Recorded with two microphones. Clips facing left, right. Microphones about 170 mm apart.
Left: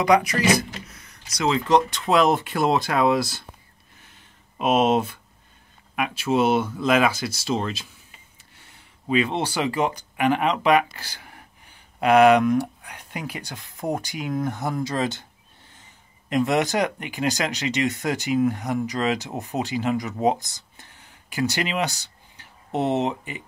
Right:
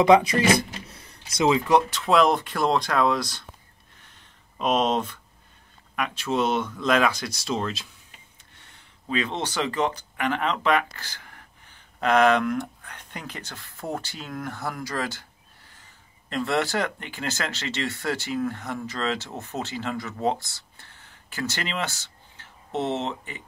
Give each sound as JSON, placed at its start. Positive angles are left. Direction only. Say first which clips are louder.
{"t": 0.0, "sound": "a sound", "louder": "right 2 dB", "side_deg": -25}
{"t": 1.4, "sound": "speech", "louder": "even", "side_deg": -15}
{"t": 1.9, "sound": "speech", "louder": "left 1 dB", "side_deg": 0}
{"t": 4.6, "sound": "speech", "louder": "left 3 dB", "side_deg": 10}
{"t": 9.1, "sound": "speech", "louder": "left 5 dB", "side_deg": 10}